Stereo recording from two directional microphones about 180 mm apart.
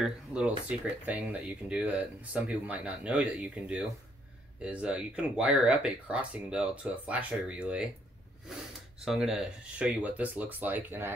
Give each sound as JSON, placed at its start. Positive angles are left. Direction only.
{"t": 0.0, "sound": "speech", "side_deg": -5}
{"t": 9.0, "sound": "speech", "side_deg": -5}